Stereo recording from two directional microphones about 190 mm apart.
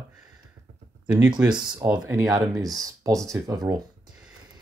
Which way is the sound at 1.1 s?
20° right (ahead or behind).